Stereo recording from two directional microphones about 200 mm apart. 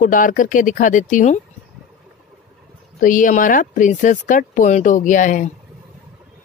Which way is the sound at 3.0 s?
40° left (ahead or behind).